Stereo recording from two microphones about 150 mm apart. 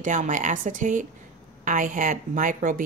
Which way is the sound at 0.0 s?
55° right (ahead or behind).